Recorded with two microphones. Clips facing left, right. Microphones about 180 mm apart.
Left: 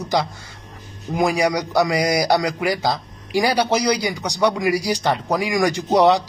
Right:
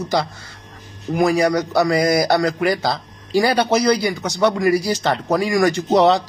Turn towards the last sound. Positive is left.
turn(degrees=15)  # may be behind; listen again after turning